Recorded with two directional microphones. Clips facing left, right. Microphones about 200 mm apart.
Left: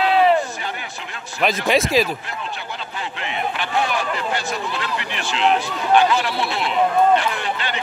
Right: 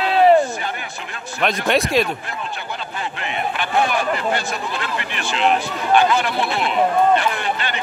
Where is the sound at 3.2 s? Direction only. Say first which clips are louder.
Right 1 dB; 50° right (ahead or behind).